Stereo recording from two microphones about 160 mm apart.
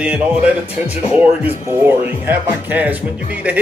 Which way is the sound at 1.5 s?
10° right (ahead or behind).